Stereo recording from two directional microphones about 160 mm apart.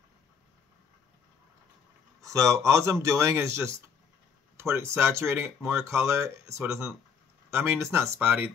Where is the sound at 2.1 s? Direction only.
20° right (ahead or behind).